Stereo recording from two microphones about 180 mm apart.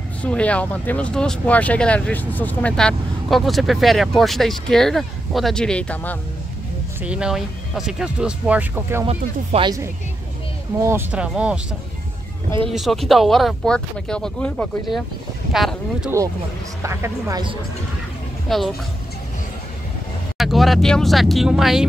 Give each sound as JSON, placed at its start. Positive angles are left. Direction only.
{"t": 0.2, "sound": "speech", "side_deg": 5}
{"t": 7.0, "sound": "speech", "side_deg": -5}
{"t": 9.0, "sound": "speech", "side_deg": -35}
{"t": 10.8, "sound": "speech", "side_deg": -15}
{"t": 12.6, "sound": "speech", "side_deg": 0}
{"t": 16.8, "sound": "speech", "side_deg": -15}
{"t": 18.5, "sound": "speech", "side_deg": 0}
{"t": 20.3, "sound": "speech", "side_deg": 0}